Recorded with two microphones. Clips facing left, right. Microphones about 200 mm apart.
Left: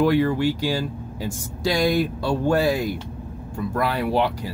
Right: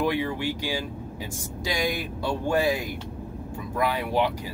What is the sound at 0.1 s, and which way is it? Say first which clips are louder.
Speech: left 8 dB; 45° left (ahead or behind).